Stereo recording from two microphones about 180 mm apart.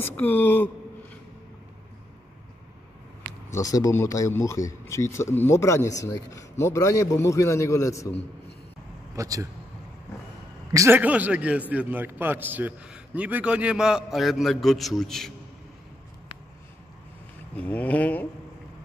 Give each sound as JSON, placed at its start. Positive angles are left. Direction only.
{"t": 0.0, "sound": "speech", "side_deg": 10}
{"t": 3.5, "sound": "speech", "side_deg": 20}
{"t": 9.1, "sound": "a man's voice", "side_deg": -20}
{"t": 10.7, "sound": "a man's voice", "side_deg": -15}
{"t": 17.6, "sound": "speech", "side_deg": 10}